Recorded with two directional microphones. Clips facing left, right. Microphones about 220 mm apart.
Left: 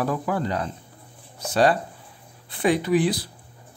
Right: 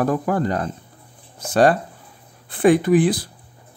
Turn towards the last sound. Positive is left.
turn(degrees=-50)  # may be behind; listen again after turning